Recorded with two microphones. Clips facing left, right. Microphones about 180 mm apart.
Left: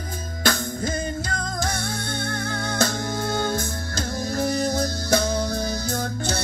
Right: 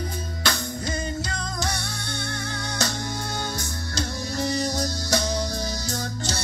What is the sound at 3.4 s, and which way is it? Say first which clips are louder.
Music: left 6 dB; 50° left (ahead or behind).